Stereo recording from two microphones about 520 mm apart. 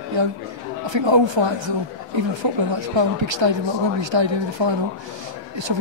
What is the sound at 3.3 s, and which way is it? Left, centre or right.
Speech, right.